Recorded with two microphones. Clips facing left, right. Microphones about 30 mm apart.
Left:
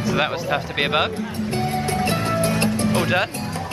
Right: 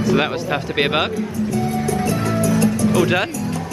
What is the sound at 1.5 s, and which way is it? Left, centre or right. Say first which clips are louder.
Music: right 1 dB; left.